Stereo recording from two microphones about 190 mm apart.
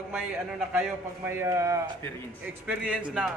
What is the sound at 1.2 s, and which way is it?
A man's voice, 15° right (ahead or behind).